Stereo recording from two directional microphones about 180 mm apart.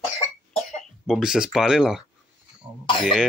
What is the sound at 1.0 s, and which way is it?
Speech, 5° right (ahead or behind).